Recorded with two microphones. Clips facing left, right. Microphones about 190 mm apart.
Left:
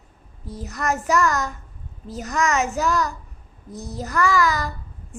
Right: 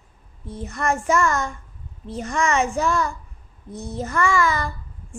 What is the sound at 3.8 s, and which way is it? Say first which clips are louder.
Child singing: right 2 dB; 30° right (ahead or behind).